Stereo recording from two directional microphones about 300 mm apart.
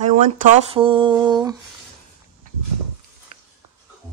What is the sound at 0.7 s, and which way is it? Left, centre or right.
Speech, centre.